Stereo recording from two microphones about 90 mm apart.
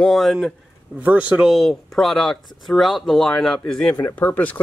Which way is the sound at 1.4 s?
Centre (ahead or behind).